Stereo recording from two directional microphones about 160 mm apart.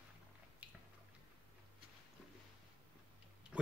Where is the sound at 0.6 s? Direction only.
10° right (ahead or behind).